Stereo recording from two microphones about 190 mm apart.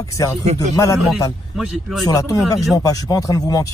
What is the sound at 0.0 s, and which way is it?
Speech, 15° left (ahead or behind).